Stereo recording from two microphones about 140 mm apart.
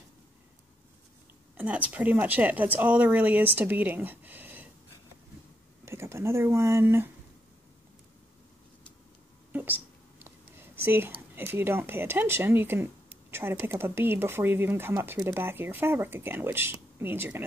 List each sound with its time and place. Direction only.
1.6 s speech: 10° right (ahead or behind)
5.9 s speech: 20° right (ahead or behind)
9.5 s a sound: 15° right (ahead or behind)
10.8 s speech: 15° right (ahead or behind)